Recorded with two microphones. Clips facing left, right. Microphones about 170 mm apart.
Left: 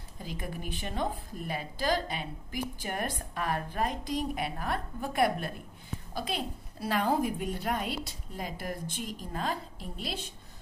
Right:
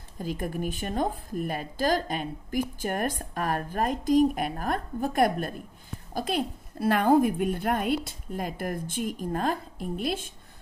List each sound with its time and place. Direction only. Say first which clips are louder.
0.2 s a woman's voice: right 8 dB; 50° right (ahead or behind)